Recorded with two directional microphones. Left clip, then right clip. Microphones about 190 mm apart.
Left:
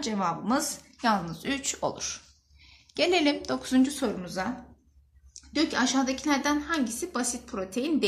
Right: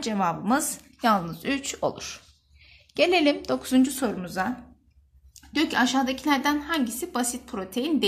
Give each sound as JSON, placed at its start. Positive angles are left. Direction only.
{"t": 0.0, "sound": "speech", "side_deg": -40}
{"t": 5.5, "sound": "a woman's voice", "side_deg": -45}